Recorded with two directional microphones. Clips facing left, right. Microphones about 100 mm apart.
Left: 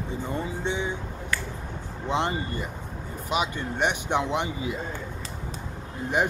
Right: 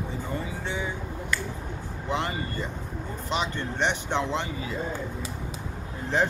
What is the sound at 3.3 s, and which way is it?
Speech, 10° left (ahead or behind).